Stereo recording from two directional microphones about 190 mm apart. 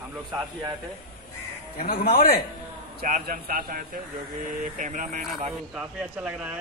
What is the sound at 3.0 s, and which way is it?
Speech, 50° right (ahead or behind).